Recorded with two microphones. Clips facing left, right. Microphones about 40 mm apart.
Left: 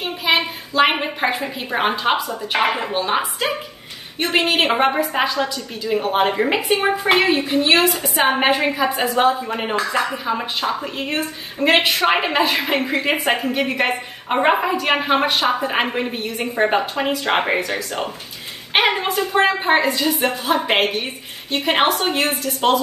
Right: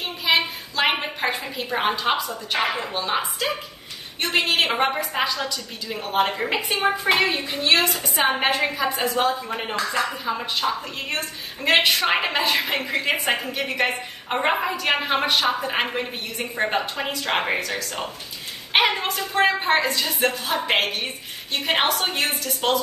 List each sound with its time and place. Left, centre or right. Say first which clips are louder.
0.0 s a sound: left 3 dB; centre
1.7 s a woman's voice: left 3 dB; left
11.0 s a woman's voice: left 5 dB; centre